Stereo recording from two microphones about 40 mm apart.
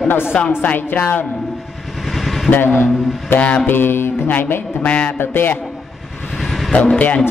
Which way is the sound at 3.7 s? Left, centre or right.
Left.